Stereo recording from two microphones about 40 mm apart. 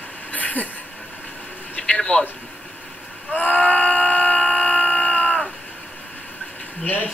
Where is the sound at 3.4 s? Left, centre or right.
Left.